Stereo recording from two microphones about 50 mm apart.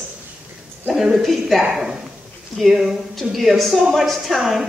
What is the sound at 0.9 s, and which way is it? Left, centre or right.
A woman's voice, centre.